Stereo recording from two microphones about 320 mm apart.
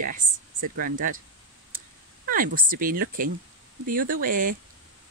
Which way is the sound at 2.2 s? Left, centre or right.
Right.